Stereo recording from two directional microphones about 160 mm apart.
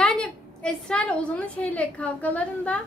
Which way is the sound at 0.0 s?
5° left (ahead or behind).